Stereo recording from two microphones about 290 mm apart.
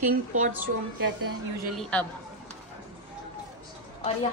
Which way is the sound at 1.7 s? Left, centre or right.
Centre.